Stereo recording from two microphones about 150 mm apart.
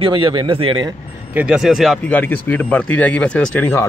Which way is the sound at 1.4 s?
5° right (ahead or behind).